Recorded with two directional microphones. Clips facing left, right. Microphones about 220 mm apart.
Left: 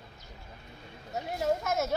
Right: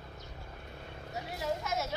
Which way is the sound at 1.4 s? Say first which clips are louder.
Left 6 dB; 45° left (ahead or behind).